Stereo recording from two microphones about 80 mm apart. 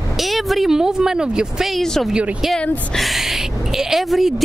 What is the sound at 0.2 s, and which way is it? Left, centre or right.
A woman's voice, centre.